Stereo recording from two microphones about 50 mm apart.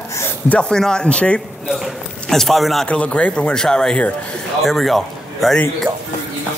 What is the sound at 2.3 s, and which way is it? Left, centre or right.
Speech, centre.